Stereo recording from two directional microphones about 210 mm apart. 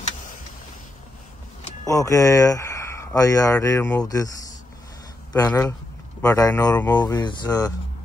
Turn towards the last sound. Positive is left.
turn(degrees=20)  # may be behind; listen again after turning